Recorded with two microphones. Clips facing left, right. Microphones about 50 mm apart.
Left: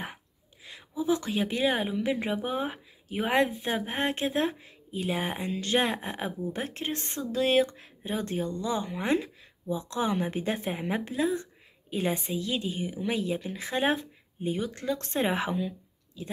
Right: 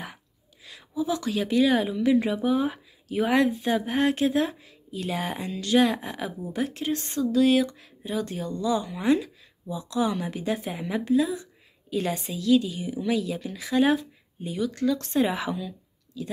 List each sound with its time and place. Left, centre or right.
0.7 s a woman's voice: left